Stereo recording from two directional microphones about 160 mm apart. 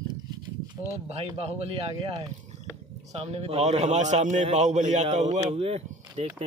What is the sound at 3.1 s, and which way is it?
A man's voice, 40° right (ahead or behind).